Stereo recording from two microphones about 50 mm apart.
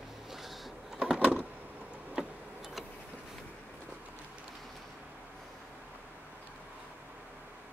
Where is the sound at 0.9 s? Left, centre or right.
Centre.